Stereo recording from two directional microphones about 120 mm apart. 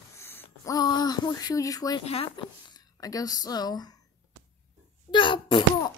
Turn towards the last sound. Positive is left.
turn(degrees=45)  # may be behind; listen again after turning